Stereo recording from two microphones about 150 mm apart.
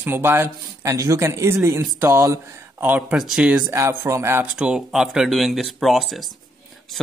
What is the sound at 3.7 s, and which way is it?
Speech, 20° right (ahead or behind).